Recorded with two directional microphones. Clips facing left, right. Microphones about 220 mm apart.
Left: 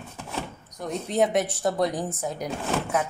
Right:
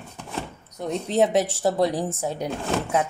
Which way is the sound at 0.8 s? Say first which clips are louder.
Right 3 dB; 25° right (ahead or behind).